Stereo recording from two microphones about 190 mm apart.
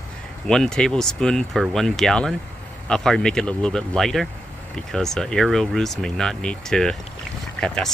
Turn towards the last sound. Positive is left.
turn(degrees=5)  # may be behind; listen again after turning